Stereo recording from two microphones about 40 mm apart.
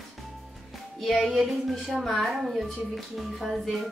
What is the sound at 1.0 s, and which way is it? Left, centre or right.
Speech, centre.